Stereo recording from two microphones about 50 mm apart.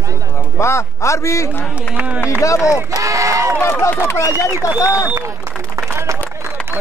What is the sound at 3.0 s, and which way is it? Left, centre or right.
Speech, right.